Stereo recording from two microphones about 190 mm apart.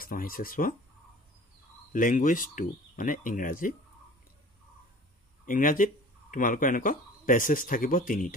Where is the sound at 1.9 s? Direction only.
45° left (ahead or behind).